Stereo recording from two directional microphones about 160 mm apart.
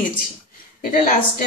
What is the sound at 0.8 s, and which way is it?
Speech, 60° left (ahead or behind).